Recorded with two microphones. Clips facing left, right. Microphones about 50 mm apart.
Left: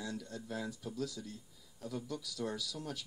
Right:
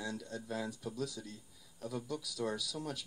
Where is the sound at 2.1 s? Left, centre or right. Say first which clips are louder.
Right 3 dB; centre.